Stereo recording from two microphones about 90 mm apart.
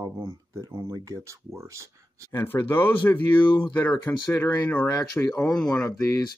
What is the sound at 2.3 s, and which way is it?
Speech, 25° left (ahead or behind).